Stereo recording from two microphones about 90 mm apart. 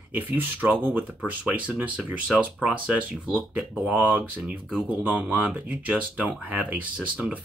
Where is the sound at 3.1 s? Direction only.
Centre (ahead or behind).